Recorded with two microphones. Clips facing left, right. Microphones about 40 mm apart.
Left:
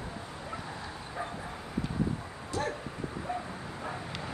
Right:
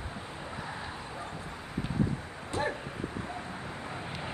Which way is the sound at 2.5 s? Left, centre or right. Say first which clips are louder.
Right 1 dB; right.